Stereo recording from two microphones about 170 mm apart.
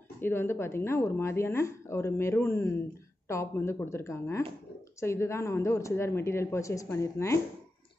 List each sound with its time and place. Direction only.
0.2 s speech: 15° left (ahead or behind)